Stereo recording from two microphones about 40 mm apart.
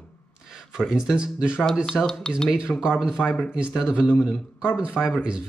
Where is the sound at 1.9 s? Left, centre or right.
Left.